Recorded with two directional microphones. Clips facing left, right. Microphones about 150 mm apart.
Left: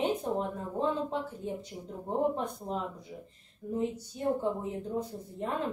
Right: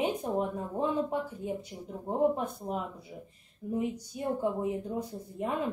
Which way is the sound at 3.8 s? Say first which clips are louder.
Left 1 dB; 10° right (ahead or behind).